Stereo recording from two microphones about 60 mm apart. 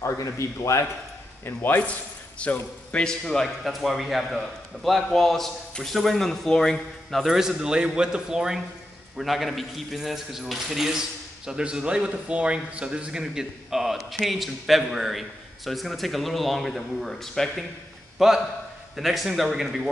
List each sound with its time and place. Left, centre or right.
0.0 s a man's voice: left
1.4 s speech: left
2.4 s a man's voice: centre
9.2 s a man's voice: centre